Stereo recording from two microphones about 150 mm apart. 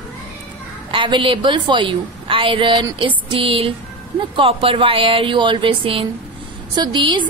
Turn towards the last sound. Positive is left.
turn(degrees=-30)  # may be behind; listen again after turning